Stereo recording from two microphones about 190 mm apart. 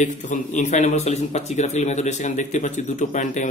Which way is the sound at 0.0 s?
40° left (ahead or behind).